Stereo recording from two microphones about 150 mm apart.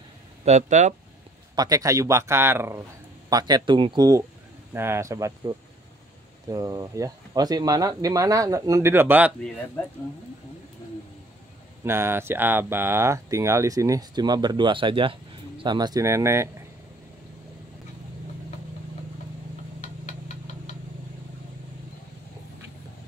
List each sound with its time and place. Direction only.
0.5 s speech: 50° right (ahead or behind)
1.5 s speech: 25° right (ahead or behind)
3.3 s speech: 25° right (ahead or behind)
4.7 s speech: 15° right (ahead or behind)
11.8 s speech: 15° right (ahead or behind)